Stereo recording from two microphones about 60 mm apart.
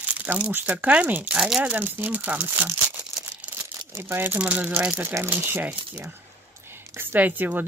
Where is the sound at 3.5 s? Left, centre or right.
Right.